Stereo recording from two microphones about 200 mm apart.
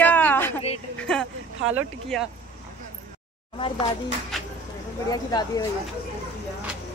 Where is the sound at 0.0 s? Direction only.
10° left (ahead or behind).